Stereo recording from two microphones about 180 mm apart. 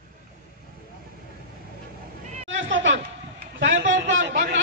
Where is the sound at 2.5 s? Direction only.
90° right.